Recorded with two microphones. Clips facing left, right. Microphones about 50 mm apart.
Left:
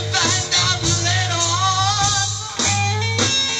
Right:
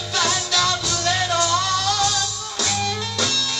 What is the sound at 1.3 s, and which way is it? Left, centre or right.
Music, right.